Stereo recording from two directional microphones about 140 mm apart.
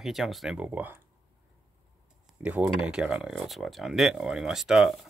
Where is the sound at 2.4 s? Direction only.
5° right (ahead or behind).